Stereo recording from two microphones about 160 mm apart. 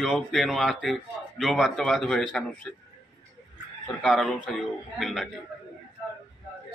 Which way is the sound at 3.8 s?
5° left (ahead or behind).